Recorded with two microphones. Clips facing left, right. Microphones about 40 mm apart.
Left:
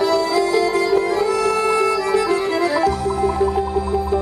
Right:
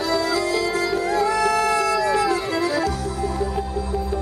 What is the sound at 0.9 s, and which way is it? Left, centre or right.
Music, left.